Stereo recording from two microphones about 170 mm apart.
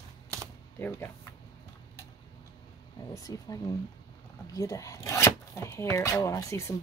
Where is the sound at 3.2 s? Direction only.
20° left (ahead or behind).